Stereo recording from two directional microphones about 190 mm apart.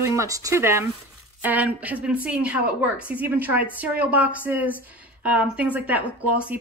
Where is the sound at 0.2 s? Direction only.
15° right (ahead or behind).